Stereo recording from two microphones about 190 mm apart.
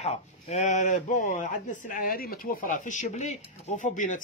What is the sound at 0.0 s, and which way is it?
A man's voice, 35° left (ahead or behind).